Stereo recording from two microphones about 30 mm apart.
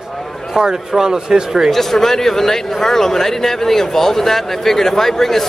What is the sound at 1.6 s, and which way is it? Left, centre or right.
A man's voice, centre.